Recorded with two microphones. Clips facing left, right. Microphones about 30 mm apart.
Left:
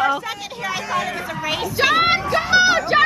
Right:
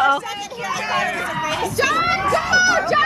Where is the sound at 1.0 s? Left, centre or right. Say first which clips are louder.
Right 4 dB; centre.